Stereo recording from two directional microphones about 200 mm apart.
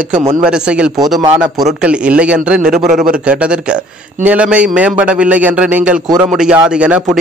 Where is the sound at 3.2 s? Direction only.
5° right (ahead or behind).